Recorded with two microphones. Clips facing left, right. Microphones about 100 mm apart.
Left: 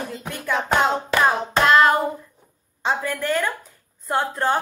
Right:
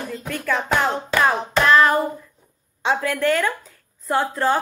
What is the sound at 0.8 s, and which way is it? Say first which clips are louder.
Hands: even; 20° left (ahead or behind).